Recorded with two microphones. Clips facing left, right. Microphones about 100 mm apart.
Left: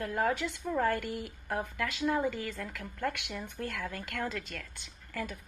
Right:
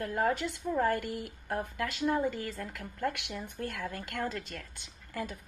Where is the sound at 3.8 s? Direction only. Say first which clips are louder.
Right 1 dB; 40° right (ahead or behind).